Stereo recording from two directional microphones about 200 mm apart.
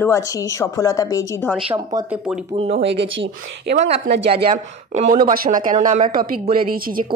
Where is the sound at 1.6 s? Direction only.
25° right (ahead or behind).